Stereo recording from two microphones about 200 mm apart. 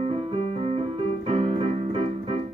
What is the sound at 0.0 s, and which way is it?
Keyboard, 30° right (ahead or behind).